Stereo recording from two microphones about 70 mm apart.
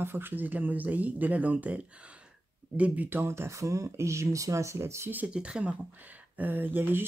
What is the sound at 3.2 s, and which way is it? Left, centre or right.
Speech, right.